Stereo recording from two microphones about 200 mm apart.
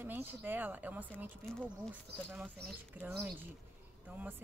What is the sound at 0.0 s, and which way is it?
A woman's voice, 10° right (ahead or behind).